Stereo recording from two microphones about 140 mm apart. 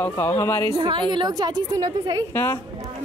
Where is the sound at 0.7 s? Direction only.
35° right (ahead or behind).